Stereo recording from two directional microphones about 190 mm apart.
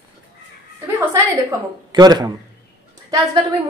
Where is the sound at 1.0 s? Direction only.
15° right (ahead or behind).